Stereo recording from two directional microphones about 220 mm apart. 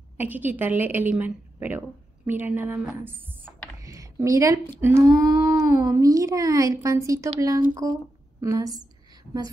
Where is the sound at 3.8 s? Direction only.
15° right (ahead or behind).